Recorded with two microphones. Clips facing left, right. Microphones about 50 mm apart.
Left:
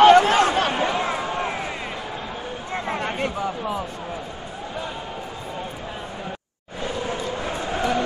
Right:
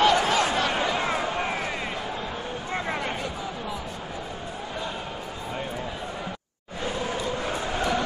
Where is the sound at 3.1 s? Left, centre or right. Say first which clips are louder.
Left 6 dB; left.